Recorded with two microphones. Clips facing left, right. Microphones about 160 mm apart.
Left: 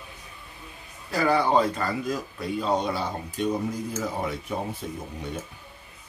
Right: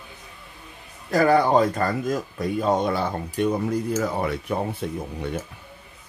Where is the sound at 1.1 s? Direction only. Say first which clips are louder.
Right 5 dB; 50° right (ahead or behind).